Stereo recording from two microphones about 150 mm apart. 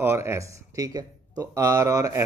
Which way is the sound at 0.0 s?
15° right (ahead or behind).